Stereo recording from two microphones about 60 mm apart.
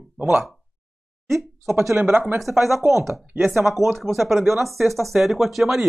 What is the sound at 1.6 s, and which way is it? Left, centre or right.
Speech, right.